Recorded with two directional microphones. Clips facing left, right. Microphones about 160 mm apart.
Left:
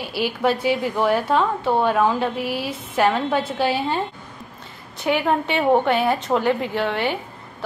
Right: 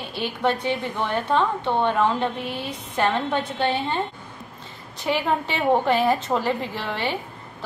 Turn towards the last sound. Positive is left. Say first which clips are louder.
# left 5 dB
turn(degrees=0)  # may be behind; listen again after turning